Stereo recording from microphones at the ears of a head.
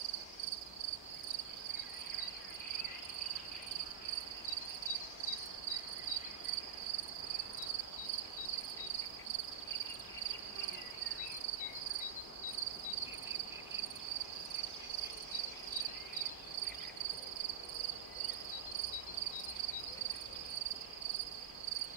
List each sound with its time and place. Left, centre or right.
0.0 s cricket: right